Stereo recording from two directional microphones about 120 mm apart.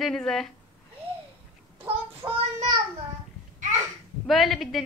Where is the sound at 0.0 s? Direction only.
5° left (ahead or behind).